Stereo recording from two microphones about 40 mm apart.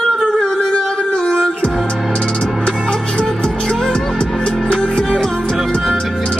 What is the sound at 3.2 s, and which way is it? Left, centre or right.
Music, centre.